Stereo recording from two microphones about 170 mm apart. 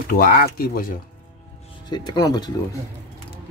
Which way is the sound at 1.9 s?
25° left (ahead or behind).